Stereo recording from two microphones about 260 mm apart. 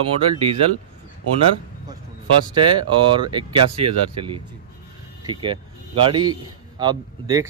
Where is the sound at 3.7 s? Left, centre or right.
Right.